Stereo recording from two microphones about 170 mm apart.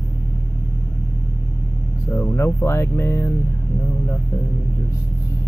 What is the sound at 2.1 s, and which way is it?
Speech, 15° left (ahead or behind).